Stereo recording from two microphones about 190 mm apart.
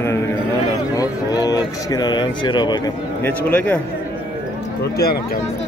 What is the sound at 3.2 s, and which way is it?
Speech, 10° left (ahead or behind).